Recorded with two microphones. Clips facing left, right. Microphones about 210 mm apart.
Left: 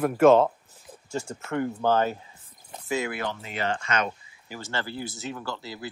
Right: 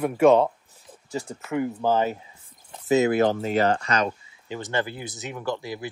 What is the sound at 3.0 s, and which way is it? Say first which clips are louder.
Speech: right 11 dB; 45° right (ahead or behind).